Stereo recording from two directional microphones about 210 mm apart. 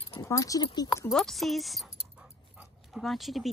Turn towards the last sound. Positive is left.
turn(degrees=0)  # may be behind; listen again after turning